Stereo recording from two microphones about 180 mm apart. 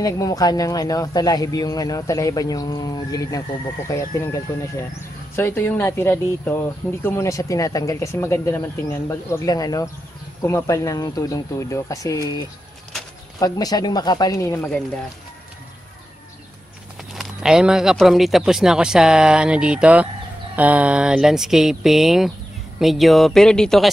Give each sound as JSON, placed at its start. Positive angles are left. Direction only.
{"t": 0.0, "sound": "speech", "side_deg": 20}
{"t": 17.1, "sound": "speech", "side_deg": -5}